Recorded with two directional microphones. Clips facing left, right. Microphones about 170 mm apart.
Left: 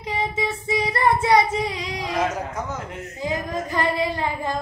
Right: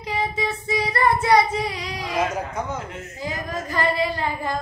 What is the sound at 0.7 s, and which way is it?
Child singing, 20° left (ahead or behind).